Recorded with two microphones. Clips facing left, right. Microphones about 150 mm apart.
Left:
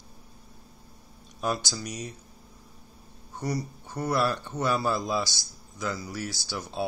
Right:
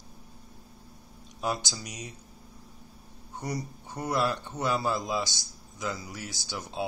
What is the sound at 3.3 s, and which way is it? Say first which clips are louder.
Speech: left 3 dB; 15° right (ahead or behind).